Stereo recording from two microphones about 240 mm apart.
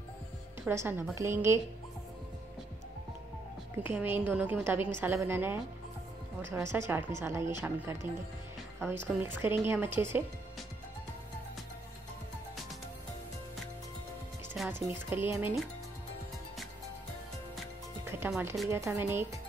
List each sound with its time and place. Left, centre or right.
0.7 s a woman's voice: centre
3.8 s a woman's voice: centre
14.5 s a woman's voice: centre
18.0 s a woman's voice: centre